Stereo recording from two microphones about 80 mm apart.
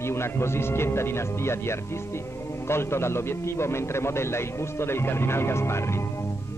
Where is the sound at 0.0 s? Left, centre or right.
Left.